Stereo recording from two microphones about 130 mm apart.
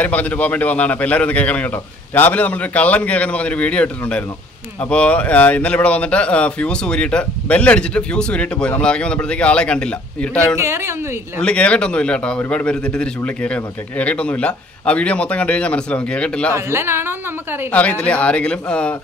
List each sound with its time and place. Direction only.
0.0 s speech: 10° left (ahead or behind)
10.6 s a woman's voice: 20° right (ahead or behind)
11.4 s speech: 10° left (ahead or behind)
16.5 s a woman's voice: 20° right (ahead or behind)
17.6 s speech: 10° left (ahead or behind)